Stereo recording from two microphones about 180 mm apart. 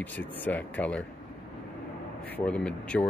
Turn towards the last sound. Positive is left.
turn(degrees=5)  # may be behind; listen again after turning